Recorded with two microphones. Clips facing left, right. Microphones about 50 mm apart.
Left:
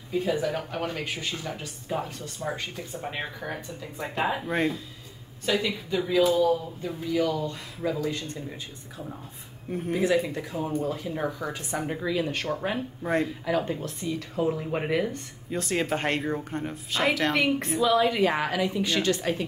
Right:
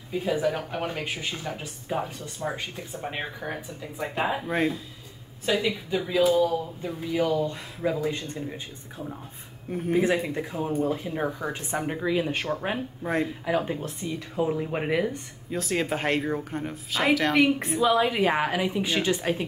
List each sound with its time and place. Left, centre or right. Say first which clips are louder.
0.1 s speech: right 1 dB; centre
7.1 s speech: right 1 dB; right
9.9 s speech: right 1 dB; right
12.7 s speech: left 1 dB; centre